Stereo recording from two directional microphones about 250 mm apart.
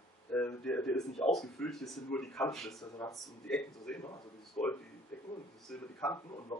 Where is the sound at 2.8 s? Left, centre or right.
Centre.